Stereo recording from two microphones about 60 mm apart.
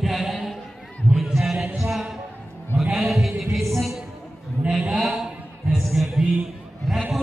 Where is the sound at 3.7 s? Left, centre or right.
Centre.